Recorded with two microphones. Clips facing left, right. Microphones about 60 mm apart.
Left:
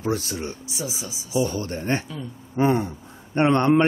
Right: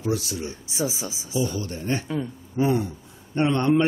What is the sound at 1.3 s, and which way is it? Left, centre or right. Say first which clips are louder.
A man's voice: left 3 dB; left.